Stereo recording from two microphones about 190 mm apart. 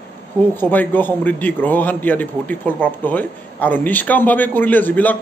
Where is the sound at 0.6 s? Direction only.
10° left (ahead or behind).